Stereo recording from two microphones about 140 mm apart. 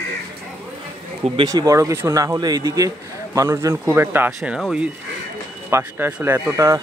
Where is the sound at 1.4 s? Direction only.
25° right (ahead or behind).